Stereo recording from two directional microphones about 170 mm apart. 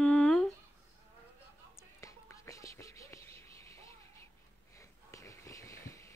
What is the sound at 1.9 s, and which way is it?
Whispering, 15° left (ahead or behind).